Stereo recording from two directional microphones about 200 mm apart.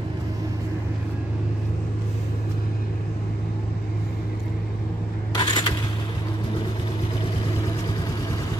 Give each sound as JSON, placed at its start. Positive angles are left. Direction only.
{"t": 5.4, "sound": "coin", "side_deg": 20}